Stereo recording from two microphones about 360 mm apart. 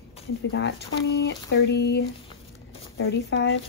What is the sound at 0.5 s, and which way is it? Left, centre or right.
Speech, left.